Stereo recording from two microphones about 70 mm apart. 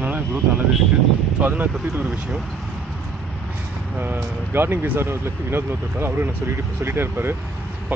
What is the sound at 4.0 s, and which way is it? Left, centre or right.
Speech, right.